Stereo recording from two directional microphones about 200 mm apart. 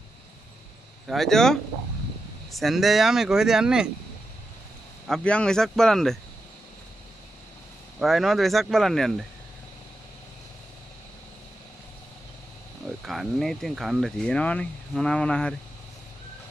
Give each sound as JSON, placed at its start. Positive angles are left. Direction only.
{"t": 1.0, "sound": "speech", "side_deg": 0}
{"t": 2.6, "sound": "speech", "side_deg": 0}
{"t": 5.0, "sound": "speech", "side_deg": 5}
{"t": 8.0, "sound": "speech", "side_deg": 0}
{"t": 13.0, "sound": "speech", "side_deg": 0}